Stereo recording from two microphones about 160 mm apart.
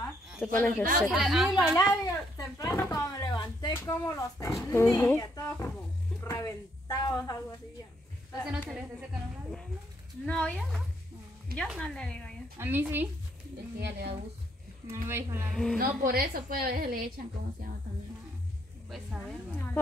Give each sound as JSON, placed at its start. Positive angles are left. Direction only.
{"t": 0.4, "sound": "speech", "side_deg": 10}
{"t": 1.0, "sound": "speech", "side_deg": 0}
{"t": 1.8, "sound": "speech", "side_deg": 20}
{"t": 8.5, "sound": "speech", "side_deg": 0}
{"t": 10.2, "sound": "speech", "side_deg": 10}
{"t": 11.5, "sound": "speech", "side_deg": 0}
{"t": 12.5, "sound": "speech", "side_deg": -15}
{"t": 13.7, "sound": "a woman's voice", "side_deg": -90}
{"t": 15.0, "sound": "speech", "side_deg": -15}
{"t": 15.5, "sound": "speech", "side_deg": 5}
{"t": 15.8, "sound": "a woman's voice", "side_deg": -65}
{"t": 18.9, "sound": "speech", "side_deg": 0}